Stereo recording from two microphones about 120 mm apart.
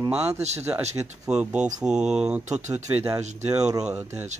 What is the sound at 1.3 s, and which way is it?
Speech, 10° right (ahead or behind).